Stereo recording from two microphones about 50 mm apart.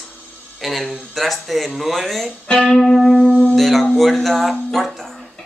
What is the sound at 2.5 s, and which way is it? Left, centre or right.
Speech, centre.